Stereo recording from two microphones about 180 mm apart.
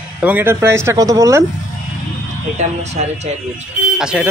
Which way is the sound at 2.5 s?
40° right (ahead or behind).